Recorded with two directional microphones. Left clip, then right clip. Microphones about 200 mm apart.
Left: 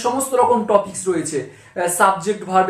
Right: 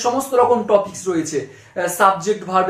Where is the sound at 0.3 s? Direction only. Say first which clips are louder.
Even; 5° left (ahead or behind).